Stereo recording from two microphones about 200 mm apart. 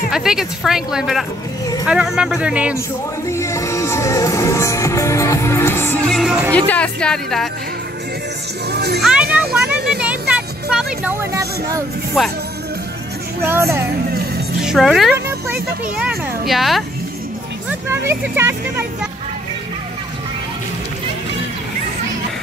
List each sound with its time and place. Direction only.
0.1 s speech: centre (ahead or behind)
3.3 s music: 15° left (ahead or behind); by 6.5 s 5° right (ahead or behind)
6.5 s speech: 5° left (ahead or behind)
8.7 s a child's voice: 55° right (ahead or behind)
9.0 s children playing: 5° right (ahead or behind)
9.9 s music: 5° right (ahead or behind)
13.5 s speech: 15° right (ahead or behind)
14.6 s speech: centre (ahead or behind)
15.2 s speech: 10° right (ahead or behind)
17.6 s speech: 10° right (ahead or behind)